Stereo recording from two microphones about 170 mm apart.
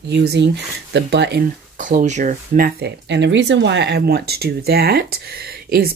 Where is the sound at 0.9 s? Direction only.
90° right.